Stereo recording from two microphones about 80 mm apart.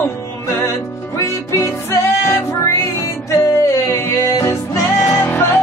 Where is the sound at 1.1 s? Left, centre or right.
Left.